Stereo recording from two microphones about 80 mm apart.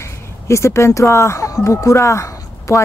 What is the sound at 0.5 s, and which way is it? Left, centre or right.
A woman's voice, left.